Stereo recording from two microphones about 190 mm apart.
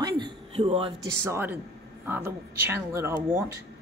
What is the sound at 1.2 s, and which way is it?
Speech, 10° right (ahead or behind).